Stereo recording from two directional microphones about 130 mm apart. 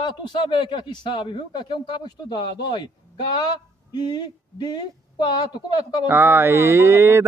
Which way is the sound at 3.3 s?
35° left (ahead or behind).